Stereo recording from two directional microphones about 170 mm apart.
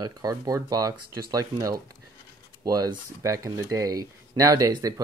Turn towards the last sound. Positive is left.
turn(degrees=-20)  # may be behind; listen again after turning